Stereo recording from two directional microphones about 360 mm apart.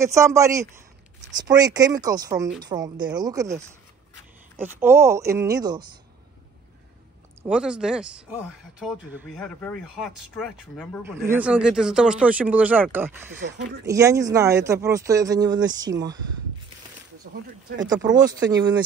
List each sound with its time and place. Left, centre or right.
0.0 s speech: centre
4.6 s speech: centre
7.4 s speech: centre
13.4 s speech: right
13.8 s speech: centre
17.8 s speech: centre